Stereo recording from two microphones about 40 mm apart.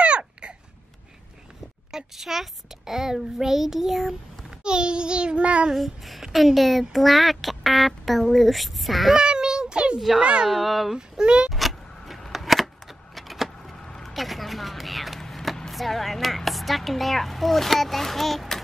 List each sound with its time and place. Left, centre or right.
0.0 s babbling: right
1.9 s a child's voice: centre
4.5 s a sound: right
5.7 s speech: centre
9.1 s child singing: centre
9.9 s a child's voice: centre
10.2 s speech: right
10.5 s speech: centre
11.0 s speech: right
11.5 s vehicle: centre
12.3 s a sound: centre
13.7 s vehicle: centre
14.1 s a sound: centre
15.7 s a woman's voice: centre